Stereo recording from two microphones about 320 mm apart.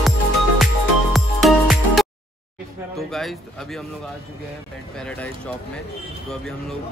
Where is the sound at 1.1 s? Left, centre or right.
Centre.